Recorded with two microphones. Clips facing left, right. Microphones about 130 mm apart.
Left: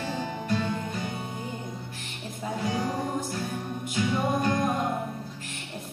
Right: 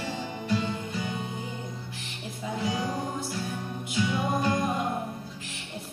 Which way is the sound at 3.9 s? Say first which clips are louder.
Left 1 dB; 50° left (ahead or behind).